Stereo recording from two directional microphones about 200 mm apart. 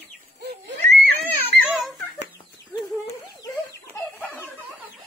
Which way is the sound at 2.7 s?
15° left (ahead or behind).